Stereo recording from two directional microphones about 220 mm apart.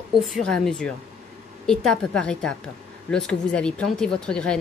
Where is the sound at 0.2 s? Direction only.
Centre (ahead or behind).